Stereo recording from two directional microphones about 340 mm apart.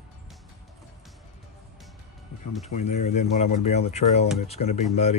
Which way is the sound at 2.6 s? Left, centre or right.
Centre.